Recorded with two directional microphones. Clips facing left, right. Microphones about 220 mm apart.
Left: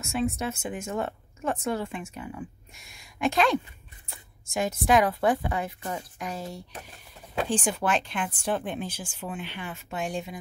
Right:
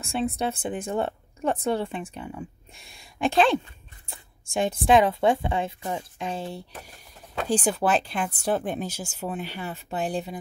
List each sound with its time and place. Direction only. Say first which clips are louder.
0.0 s a woman's voice: right 1 dB; 35° right (ahead or behind)